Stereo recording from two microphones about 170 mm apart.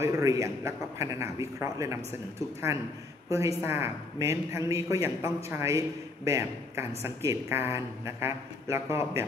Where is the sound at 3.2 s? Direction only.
20° right (ahead or behind).